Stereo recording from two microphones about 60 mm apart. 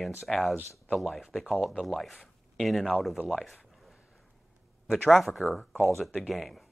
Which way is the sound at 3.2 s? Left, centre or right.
Centre.